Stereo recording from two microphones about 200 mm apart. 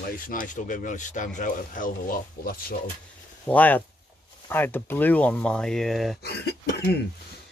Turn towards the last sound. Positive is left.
turn(degrees=55)  # may be behind; listen again after turning